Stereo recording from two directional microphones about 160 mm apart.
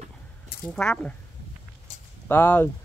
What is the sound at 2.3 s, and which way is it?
Speech, 10° left (ahead or behind).